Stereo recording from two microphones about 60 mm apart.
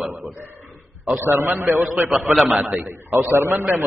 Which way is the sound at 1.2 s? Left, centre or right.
Right.